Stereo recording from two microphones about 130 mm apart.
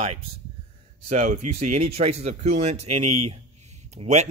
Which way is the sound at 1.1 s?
70° right (ahead or behind).